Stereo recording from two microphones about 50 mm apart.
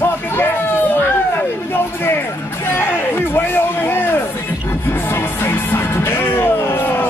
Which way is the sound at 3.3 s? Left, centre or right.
Left.